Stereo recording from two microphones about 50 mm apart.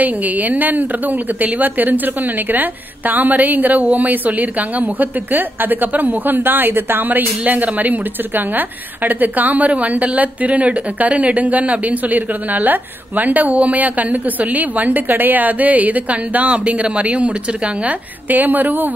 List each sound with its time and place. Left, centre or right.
0.0 s a woman's voice: right